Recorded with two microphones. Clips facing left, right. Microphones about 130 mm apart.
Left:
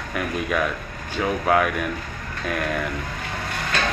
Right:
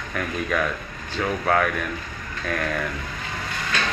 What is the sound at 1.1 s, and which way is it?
Speech, 10° left (ahead or behind).